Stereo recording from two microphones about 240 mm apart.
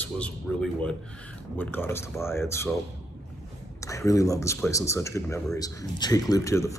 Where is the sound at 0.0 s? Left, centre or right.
Centre.